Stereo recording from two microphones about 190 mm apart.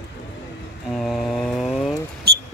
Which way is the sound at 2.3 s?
55° right (ahead or behind).